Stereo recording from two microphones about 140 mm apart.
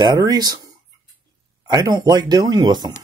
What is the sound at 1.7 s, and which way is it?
Speech, 30° right (ahead or behind).